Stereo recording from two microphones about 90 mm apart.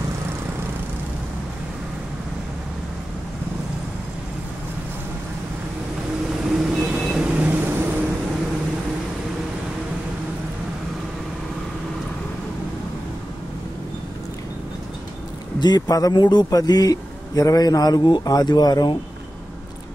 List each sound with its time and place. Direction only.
6.5 s vehicle: 5° right (ahead or behind); by 8.0 s 25° right (ahead or behind)
15.6 s a man's voice: 45° left (ahead or behind)